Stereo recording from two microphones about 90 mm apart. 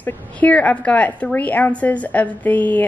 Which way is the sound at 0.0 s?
15° left (ahead or behind).